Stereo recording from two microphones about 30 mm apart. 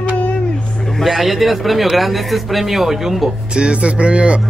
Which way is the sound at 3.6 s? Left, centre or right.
Right.